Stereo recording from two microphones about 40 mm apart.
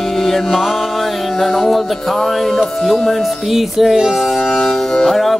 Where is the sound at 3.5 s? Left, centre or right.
Centre.